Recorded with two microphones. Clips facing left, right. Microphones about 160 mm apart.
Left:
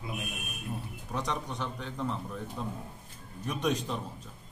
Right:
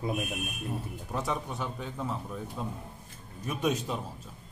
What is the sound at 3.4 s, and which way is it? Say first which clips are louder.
Speech: right 1 dB; 5° right (ahead or behind).